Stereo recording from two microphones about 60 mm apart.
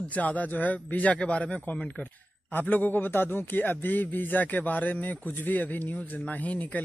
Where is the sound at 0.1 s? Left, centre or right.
Left.